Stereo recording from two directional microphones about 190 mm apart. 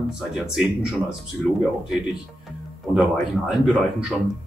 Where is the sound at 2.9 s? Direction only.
Centre (ahead or behind).